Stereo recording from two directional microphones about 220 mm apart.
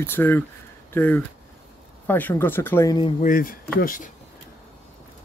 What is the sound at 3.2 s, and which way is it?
Speech, 40° left (ahead or behind).